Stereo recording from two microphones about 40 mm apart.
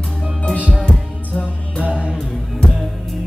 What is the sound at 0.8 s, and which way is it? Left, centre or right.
Music, left.